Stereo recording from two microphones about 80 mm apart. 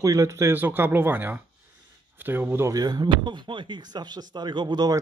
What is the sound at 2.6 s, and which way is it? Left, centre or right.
Speech, right.